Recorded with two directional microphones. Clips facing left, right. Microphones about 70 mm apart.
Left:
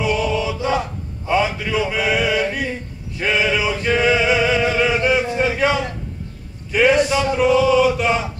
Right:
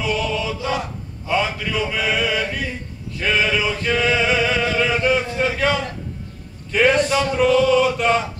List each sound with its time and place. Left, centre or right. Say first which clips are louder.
0.0 s chant: left 3 dB; left
3.2 s male singing: left 1 dB; left
6.7 s a sound: left 1 dB; centre